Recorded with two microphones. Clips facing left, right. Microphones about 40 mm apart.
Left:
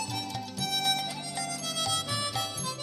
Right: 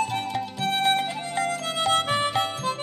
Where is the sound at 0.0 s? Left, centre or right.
Right.